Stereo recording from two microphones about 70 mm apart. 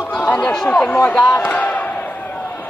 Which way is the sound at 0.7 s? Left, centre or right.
Centre.